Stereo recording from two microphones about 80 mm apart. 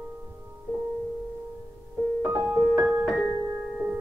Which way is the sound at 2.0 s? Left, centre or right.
Centre.